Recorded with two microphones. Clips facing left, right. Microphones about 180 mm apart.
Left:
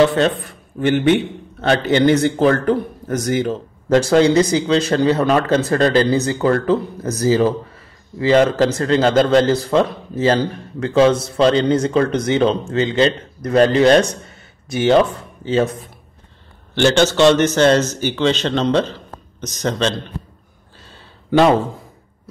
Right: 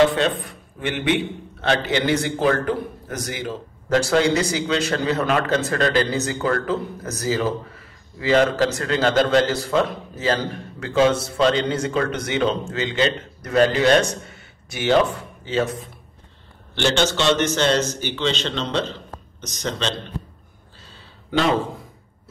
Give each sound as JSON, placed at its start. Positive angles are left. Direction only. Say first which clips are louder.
{"t": 0.5, "sound": "a man's voice", "louder": "left 10 dB", "side_deg": 45}
{"t": 14.2, "sound": "a sound", "louder": "left 1 dB", "side_deg": 35}
{"t": 15.4, "sound": "speech", "louder": "left 5 dB", "side_deg": 35}
{"t": 16.7, "sound": "a man's voice", "louder": "left 6 dB", "side_deg": 45}